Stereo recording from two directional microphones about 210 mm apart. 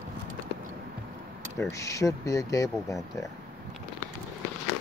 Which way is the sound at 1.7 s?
15° left (ahead or behind).